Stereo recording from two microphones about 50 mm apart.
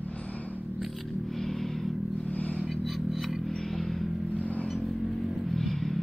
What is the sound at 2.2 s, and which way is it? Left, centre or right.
Vehicle, left.